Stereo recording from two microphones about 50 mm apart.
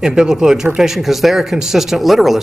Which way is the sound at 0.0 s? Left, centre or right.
Centre.